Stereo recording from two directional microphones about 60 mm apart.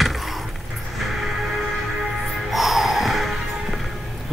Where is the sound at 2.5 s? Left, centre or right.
Centre.